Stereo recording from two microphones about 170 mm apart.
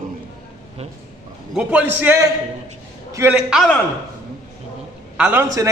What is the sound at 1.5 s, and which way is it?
A man's voice, 5° right (ahead or behind).